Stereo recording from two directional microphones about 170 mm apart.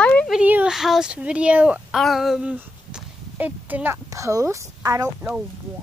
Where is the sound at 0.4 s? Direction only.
10° right (ahead or behind).